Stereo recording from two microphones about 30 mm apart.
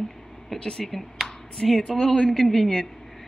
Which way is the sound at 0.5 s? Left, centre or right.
Left.